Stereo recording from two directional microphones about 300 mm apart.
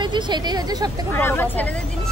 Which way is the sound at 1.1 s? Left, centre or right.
Centre.